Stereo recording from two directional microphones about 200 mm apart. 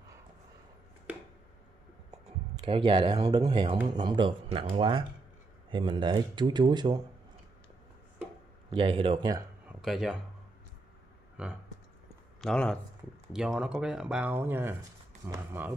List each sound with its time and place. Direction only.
2.0 s speech: 20° right (ahead or behind)
8.7 s speech: 25° right (ahead or behind)
9.7 s a sound: centre (ahead or behind)
11.4 s speech: 5° right (ahead or behind)